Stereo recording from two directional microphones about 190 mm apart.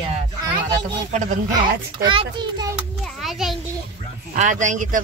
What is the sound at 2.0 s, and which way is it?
Speech, 25° right (ahead or behind).